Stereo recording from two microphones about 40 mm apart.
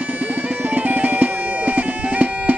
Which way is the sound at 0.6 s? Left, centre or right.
Right.